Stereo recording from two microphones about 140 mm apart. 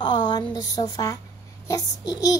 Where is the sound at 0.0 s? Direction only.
30° left (ahead or behind).